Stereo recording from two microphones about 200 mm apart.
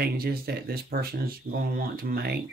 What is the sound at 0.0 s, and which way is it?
Speech, 50° right (ahead or behind).